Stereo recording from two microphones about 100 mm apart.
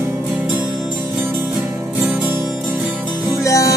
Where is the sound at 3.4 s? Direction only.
35° left (ahead or behind).